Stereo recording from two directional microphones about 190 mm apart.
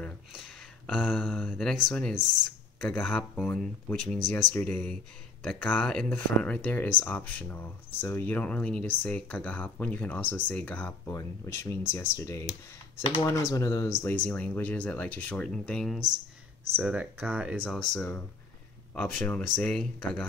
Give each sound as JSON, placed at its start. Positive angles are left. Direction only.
{"t": 0.0, "sound": "a sound", "side_deg": 0}
{"t": 1.0, "sound": "speech", "side_deg": 10}
{"t": 13.0, "sound": "speech", "side_deg": 30}
{"t": 13.3, "sound": "speech", "side_deg": 15}